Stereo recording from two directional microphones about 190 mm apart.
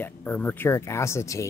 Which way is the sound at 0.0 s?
10° left (ahead or behind).